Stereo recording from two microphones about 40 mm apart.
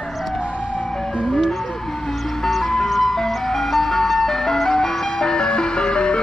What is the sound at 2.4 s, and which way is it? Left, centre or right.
Ice cream truck, centre.